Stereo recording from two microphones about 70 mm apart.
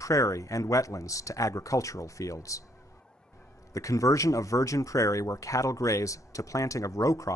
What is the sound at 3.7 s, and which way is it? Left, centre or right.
Speech, left.